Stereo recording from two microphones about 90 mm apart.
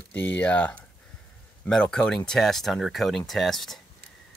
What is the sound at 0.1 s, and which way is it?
Speech, 20° left (ahead or behind).